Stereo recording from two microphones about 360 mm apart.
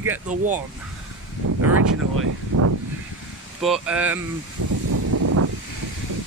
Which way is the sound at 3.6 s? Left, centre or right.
Centre.